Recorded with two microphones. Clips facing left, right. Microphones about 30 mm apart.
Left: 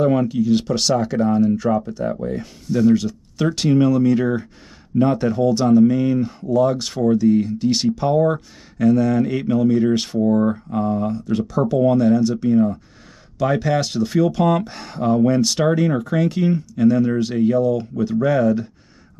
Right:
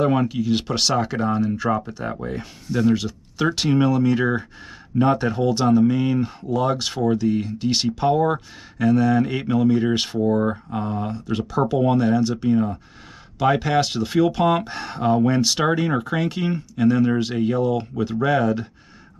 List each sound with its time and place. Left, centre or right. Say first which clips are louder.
0.0 s speech: left 3 dB; right